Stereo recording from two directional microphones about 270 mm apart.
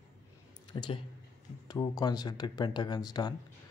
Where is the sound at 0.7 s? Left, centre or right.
Centre.